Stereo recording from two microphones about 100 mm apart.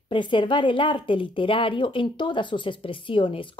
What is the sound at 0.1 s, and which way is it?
A woman's voice, 55° left (ahead or behind).